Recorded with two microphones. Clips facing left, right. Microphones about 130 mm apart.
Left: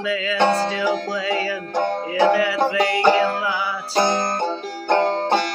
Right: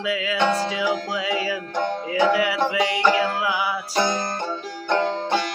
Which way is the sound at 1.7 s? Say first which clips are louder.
Left 4 dB; 40° left (ahead or behind).